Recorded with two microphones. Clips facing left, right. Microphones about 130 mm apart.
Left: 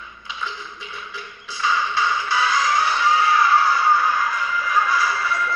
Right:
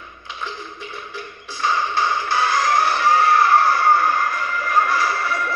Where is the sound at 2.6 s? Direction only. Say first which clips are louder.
Right 2 dB; 55° right (ahead or behind).